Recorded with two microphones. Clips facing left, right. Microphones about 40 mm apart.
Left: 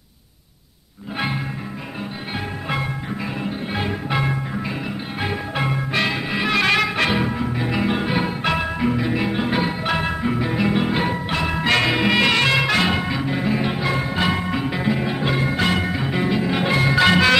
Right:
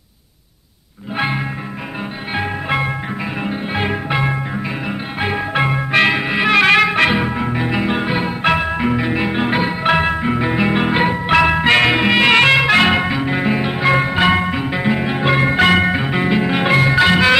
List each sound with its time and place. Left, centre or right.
1.1 s music: right
2.3 s music: right
4.1 s music: right
5.2 s music: right
6.3 s music: right
7.3 s music: right
7.6 s music: right
11.2 s music: right
11.5 s music: right
14.5 s music: right
15.2 s music: right
16.1 s music: right
17.0 s music: centre